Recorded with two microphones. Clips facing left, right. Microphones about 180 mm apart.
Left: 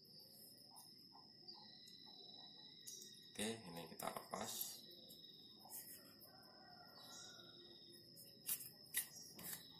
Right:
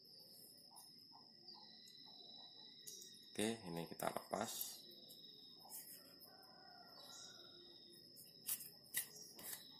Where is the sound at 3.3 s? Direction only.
60° right (ahead or behind).